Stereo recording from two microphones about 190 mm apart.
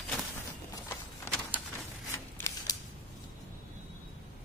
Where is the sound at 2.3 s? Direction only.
15° left (ahead or behind).